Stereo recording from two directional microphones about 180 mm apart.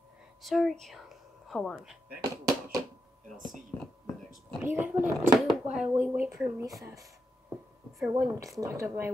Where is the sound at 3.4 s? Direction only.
Centre (ahead or behind).